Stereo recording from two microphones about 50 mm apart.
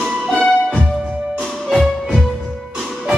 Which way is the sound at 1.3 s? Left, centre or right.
Centre.